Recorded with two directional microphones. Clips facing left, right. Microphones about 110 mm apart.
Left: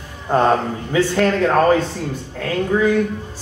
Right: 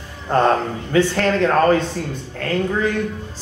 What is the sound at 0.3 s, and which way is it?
Speech, 15° left (ahead or behind).